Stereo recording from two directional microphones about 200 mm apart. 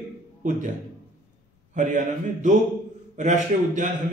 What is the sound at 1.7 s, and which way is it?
A man's voice, 40° right (ahead or behind).